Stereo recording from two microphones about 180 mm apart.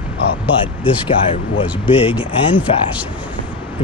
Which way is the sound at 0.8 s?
10° right (ahead or behind).